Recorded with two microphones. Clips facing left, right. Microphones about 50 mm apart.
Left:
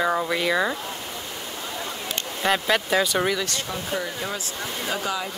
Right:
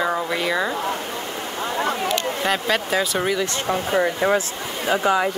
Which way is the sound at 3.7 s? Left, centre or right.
Right.